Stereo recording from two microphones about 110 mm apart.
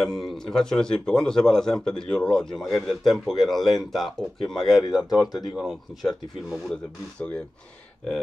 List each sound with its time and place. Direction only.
0.0 s speech: centre (ahead or behind)
4.8 s speech: 35° left (ahead or behind)
5.4 s speech: centre (ahead or behind)